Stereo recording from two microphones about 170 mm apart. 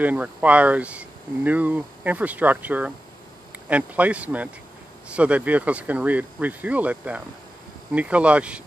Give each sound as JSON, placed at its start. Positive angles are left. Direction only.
{"t": 0.0, "sound": "speech", "side_deg": -10}